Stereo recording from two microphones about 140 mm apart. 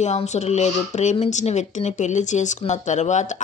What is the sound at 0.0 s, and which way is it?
Speech, 55° left (ahead or behind).